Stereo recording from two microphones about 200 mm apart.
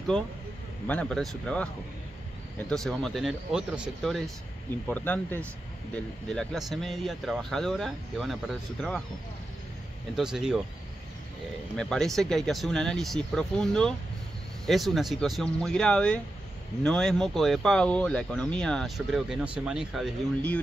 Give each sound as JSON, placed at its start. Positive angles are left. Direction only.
{"t": 0.8, "sound": "speech", "side_deg": 5}
{"t": 2.7, "sound": "speech", "side_deg": 0}
{"t": 4.8, "sound": "speech", "side_deg": 10}
{"t": 10.1, "sound": "speech", "side_deg": 0}
{"t": 11.7, "sound": "speech", "side_deg": 5}